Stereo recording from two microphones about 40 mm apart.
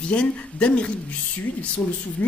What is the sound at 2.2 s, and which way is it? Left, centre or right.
Speech, left.